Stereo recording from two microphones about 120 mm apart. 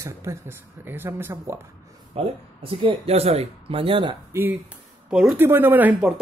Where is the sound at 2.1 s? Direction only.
50° right (ahead or behind).